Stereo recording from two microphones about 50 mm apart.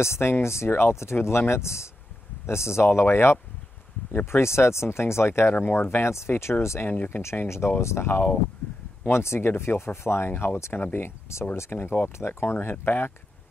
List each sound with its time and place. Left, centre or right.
0.0 s speech: left
5.5 s speech: left
6.9 s speech: left
7.4 s speech: left
8.1 s speech: left
9.1 s speech: left